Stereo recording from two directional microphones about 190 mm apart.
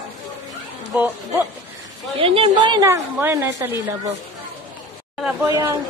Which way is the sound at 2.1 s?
30° right (ahead or behind).